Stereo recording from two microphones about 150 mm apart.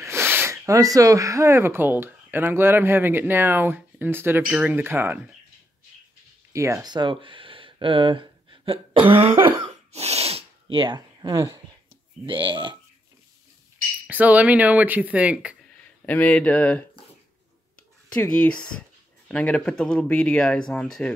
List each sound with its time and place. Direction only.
0.0 s speech: 15° right (ahead or behind)
4.5 s speech: 5° right (ahead or behind)
4.7 s speech: 15° right (ahead or behind)
6.5 s speech: 20° right (ahead or behind); by 9.5 s 35° right (ahead or behind)
9.9 s sneeze: 45° right (ahead or behind)
11.3 s speech: 25° right (ahead or behind)
14.0 s speech: 10° right (ahead or behind)
16.1 s speech: 10° left (ahead or behind)
18.1 s speech: 10° left (ahead or behind)